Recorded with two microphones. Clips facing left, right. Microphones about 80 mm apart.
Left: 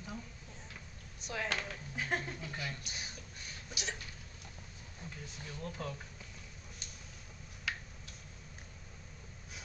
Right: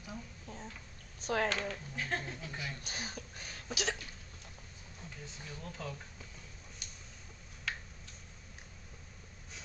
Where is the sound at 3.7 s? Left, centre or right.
Right.